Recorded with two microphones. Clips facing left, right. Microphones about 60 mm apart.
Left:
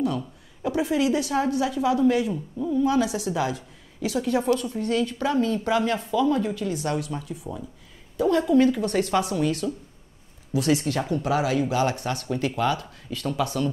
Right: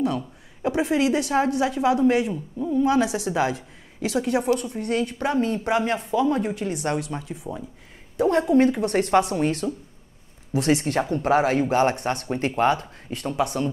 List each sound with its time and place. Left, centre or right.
0.6 s speech: right
4.4 s speech: right